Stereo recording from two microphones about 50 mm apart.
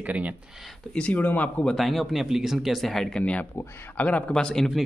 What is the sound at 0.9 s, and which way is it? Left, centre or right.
Speech, left.